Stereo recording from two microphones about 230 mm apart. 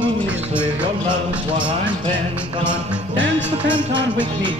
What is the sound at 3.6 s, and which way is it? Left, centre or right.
Music, centre.